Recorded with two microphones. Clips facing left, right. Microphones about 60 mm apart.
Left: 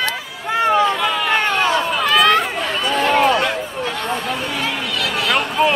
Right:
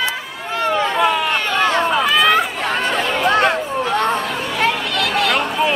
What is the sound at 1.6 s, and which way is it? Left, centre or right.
Run, right.